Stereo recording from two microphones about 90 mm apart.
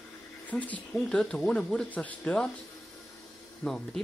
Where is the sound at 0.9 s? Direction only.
5° left (ahead or behind).